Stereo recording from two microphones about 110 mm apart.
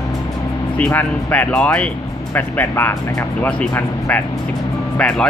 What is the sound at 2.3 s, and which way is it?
Speech, 20° left (ahead or behind).